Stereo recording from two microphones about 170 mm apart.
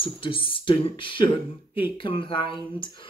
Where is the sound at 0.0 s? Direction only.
30° left (ahead or behind).